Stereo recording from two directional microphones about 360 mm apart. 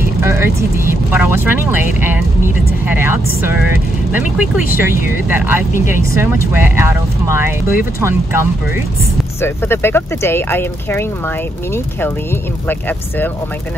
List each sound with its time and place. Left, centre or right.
0.0 s speech: centre
4.7 s speech: centre
9.4 s speech: centre
12.6 s speech: centre